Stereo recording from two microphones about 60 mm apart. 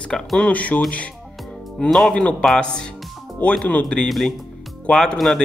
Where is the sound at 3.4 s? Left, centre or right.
Left.